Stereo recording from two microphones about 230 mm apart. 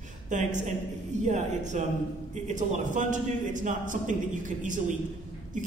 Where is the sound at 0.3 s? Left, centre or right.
Right.